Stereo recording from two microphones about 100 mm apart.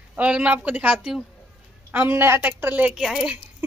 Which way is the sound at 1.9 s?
25° right (ahead or behind).